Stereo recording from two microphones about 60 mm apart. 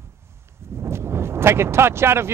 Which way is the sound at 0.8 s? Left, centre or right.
Right.